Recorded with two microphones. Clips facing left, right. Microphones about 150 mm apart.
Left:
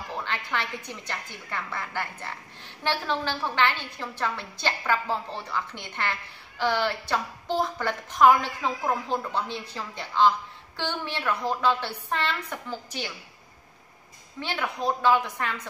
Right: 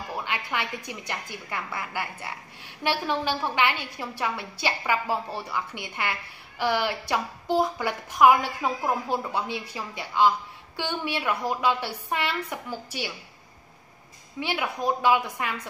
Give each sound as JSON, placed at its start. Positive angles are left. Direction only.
{"t": 0.2, "sound": "a woman's voice", "side_deg": -15}
{"t": 14.4, "sound": "a woman's voice", "side_deg": -10}